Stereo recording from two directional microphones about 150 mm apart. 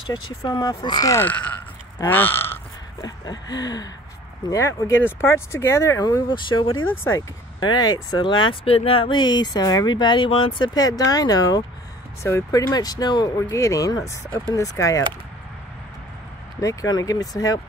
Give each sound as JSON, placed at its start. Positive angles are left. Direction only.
{"t": 0.1, "sound": "speech", "side_deg": 25}
{"t": 2.0, "sound": "a sound", "side_deg": 15}
{"t": 4.5, "sound": "speech", "side_deg": 20}
{"t": 7.1, "sound": "speech", "side_deg": 20}
{"t": 16.6, "sound": "speech", "side_deg": 25}